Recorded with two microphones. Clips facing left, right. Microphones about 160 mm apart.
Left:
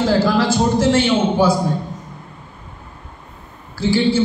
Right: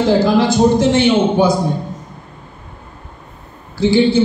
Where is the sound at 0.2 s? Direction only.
15° right (ahead or behind).